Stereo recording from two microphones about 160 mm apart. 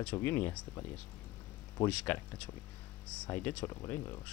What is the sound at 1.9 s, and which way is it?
Speech, 10° left (ahead or behind).